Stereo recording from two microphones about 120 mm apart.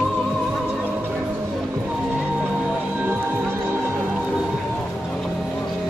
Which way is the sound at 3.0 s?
20° right (ahead or behind).